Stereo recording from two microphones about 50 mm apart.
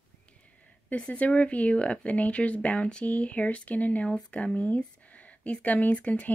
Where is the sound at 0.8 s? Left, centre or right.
Left.